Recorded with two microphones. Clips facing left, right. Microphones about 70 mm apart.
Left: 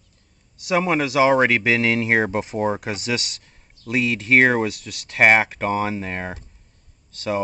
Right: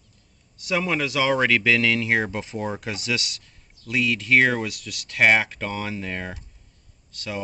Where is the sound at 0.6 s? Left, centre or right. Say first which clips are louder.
Left 4 dB; left.